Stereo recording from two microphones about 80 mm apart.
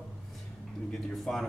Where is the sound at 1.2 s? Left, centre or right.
Centre.